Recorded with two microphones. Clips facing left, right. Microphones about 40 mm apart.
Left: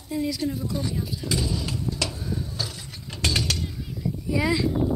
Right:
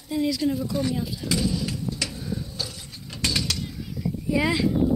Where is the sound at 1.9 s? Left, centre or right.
Left.